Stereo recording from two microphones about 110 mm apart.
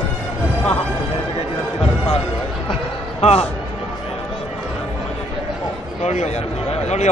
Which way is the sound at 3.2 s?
65° left (ahead or behind).